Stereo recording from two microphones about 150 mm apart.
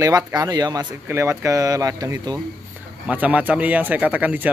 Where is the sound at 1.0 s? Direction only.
15° right (ahead or behind).